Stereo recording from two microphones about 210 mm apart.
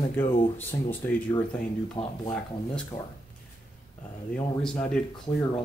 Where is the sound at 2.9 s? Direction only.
25° left (ahead or behind).